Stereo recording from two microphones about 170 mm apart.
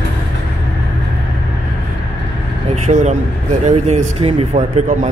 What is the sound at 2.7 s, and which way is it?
A man's voice, 45° right (ahead or behind).